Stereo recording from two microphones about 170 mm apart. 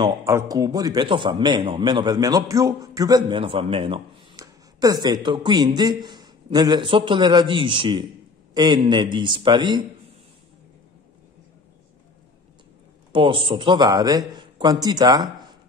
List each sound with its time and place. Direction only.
0.0 s a man's voice: 15° right (ahead or behind)
4.4 s a man's voice: 20° right (ahead or behind)
13.1 s a man's voice: 30° right (ahead or behind)